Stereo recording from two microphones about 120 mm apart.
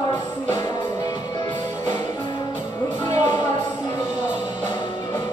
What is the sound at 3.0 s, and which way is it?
Music, 30° left (ahead or behind).